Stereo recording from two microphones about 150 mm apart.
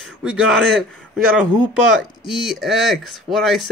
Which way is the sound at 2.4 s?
Centre (ahead or behind).